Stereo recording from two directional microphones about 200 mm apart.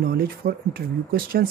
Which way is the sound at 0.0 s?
50° right (ahead or behind).